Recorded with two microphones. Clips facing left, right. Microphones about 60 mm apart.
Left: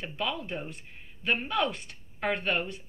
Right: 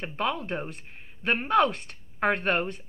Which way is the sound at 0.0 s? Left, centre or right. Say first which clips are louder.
Right 4 dB; right.